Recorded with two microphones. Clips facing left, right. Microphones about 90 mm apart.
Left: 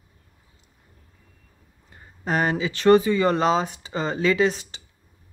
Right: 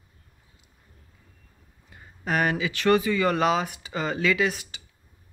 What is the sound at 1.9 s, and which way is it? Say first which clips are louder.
Speech: left 2 dB; 30° left (ahead or behind).